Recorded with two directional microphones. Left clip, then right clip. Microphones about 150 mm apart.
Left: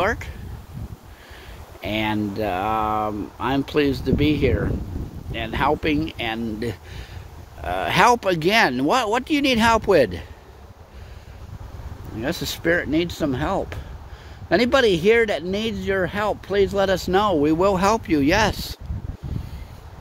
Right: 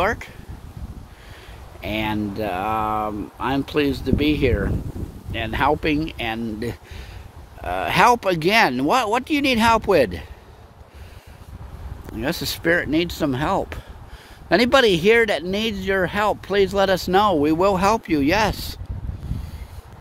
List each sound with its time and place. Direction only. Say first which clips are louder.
0.0 s speech: right 1 dB; 15° right (ahead or behind)
1.8 s speech: left 1 dB; 5° right (ahead or behind)
12.2 s speech: right 1 dB; 25° right (ahead or behind)